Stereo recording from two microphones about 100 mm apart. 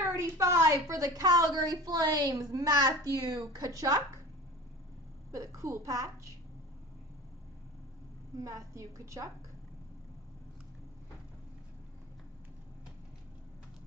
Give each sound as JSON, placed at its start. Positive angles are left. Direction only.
{"t": 0.0, "sound": "a woman's voice", "side_deg": -30}
{"t": 5.3, "sound": "a woman's voice", "side_deg": -35}
{"t": 8.4, "sound": "a woman's voice", "side_deg": -35}